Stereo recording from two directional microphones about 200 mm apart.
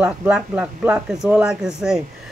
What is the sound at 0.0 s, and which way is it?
Speech, 5° right (ahead or behind).